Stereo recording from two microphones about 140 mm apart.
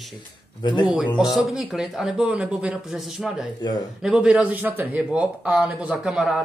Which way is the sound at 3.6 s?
30° left (ahead or behind).